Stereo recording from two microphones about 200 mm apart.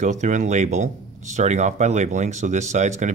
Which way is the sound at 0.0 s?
35° right (ahead or behind).